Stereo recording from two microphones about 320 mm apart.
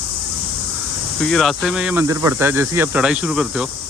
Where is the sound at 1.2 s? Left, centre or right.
Centre.